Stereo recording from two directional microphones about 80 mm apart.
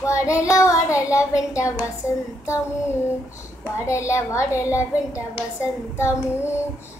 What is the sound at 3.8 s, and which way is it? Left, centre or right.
Child singing, left.